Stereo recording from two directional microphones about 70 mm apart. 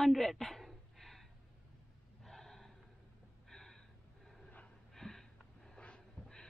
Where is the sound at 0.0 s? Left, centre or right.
Centre.